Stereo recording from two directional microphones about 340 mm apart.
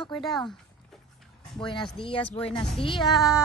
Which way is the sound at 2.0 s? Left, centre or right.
Centre.